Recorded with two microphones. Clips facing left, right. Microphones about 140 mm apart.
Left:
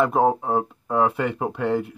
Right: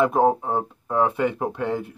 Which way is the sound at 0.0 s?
Centre (ahead or behind).